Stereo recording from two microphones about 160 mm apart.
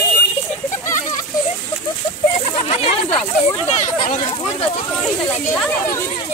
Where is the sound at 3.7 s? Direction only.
50° left (ahead or behind).